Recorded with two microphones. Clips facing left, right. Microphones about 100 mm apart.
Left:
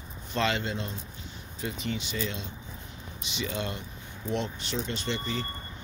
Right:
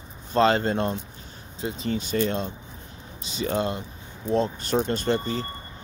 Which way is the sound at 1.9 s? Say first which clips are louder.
Right 10 dB; 45° right (ahead or behind).